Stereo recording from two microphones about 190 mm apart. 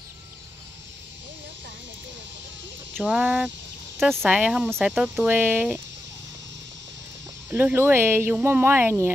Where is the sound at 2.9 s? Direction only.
Centre (ahead or behind).